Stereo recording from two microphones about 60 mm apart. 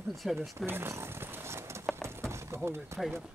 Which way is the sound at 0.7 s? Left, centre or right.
Right.